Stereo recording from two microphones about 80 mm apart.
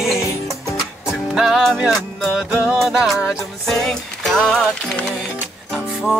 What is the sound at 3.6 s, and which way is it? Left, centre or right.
Music, centre.